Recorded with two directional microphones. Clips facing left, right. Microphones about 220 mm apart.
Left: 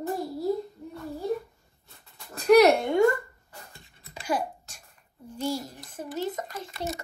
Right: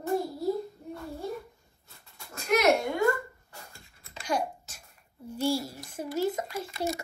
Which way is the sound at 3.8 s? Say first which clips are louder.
Left 2 dB; 5° left (ahead or behind).